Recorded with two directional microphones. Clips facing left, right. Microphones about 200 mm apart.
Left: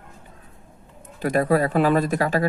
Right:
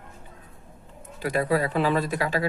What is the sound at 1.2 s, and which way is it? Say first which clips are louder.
Speech: left 4 dB; 45° left (ahead or behind).